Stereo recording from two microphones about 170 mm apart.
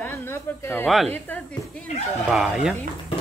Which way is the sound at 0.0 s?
10° left (ahead or behind).